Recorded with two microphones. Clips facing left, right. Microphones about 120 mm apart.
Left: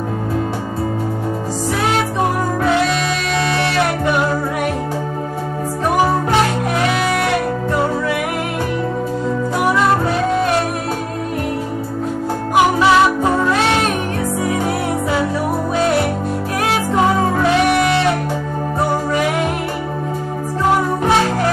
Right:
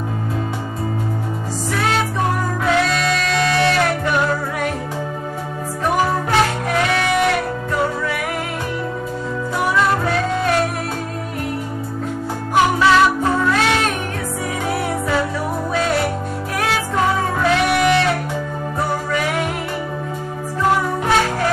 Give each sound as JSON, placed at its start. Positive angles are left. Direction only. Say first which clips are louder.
{"t": 12.5, "sound": "music", "louder": "left 1 dB", "side_deg": 15}